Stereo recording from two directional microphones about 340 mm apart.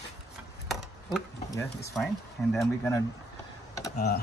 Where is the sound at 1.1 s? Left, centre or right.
Centre.